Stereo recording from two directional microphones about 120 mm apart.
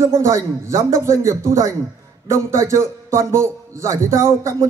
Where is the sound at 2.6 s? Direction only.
25° right (ahead or behind).